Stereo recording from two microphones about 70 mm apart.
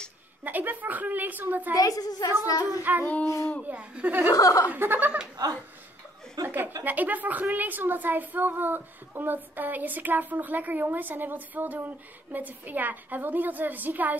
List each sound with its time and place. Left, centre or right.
0.4 s a woman's voice: right
1.8 s a woman's voice: left
2.4 s a woman's voice: left
2.8 s a woman's voice: right
4.3 s speech: left
4.6 s a woman's voice: right
6.4 s a woman's voice: right